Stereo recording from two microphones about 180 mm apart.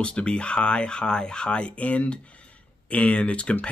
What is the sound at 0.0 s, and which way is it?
Speech, 5° left (ahead or behind).